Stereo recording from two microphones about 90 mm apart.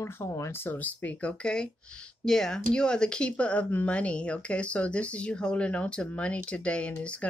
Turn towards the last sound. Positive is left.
turn(degrees=15)  # may be behind; listen again after turning